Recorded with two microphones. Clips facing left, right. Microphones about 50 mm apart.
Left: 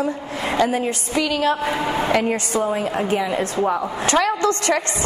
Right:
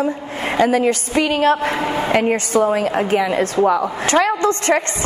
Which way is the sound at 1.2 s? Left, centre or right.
Right.